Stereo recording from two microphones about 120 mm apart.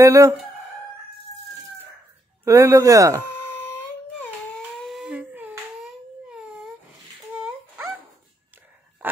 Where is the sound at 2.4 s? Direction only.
25° right (ahead or behind).